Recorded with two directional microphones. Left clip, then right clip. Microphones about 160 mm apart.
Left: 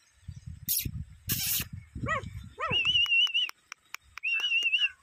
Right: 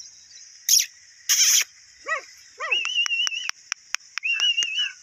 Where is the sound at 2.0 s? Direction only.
50° left (ahead or behind).